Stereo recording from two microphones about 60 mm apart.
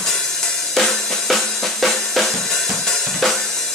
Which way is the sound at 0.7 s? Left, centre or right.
Centre.